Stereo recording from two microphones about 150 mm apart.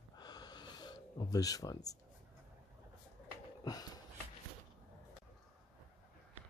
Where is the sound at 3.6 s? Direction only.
25° left (ahead or behind).